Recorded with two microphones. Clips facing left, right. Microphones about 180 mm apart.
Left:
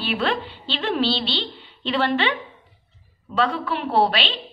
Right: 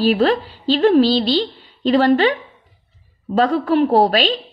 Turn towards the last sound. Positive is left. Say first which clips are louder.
# right 6 dB
turn(degrees=-40)  # may be behind; listen again after turning